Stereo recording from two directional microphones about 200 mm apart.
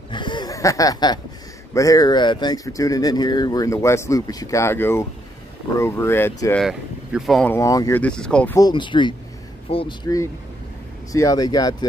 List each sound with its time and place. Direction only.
0.1 s laughter: 25° left (ahead or behind)
1.7 s speech: 15° left (ahead or behind)
6.6 s speech: centre (ahead or behind)
7.5 s speech: 15° left (ahead or behind)
8.5 s speech: 20° left (ahead or behind)